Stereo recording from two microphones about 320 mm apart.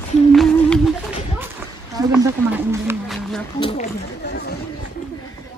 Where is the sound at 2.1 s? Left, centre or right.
Centre.